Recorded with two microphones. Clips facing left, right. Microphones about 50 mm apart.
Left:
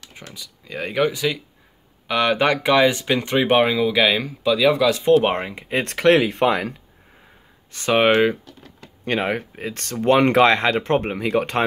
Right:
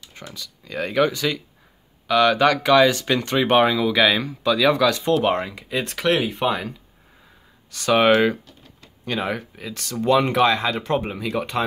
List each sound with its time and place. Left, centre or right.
0.3 s speech: centre
2.0 s speech: left
4.9 s speech: left
5.8 s speech: left
7.7 s speech: left
9.0 s speech: left
10.2 s speech: left
10.8 s speech: left